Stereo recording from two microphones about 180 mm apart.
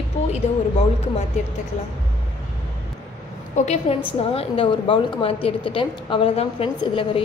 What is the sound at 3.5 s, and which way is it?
A woman's voice, 40° left (ahead or behind).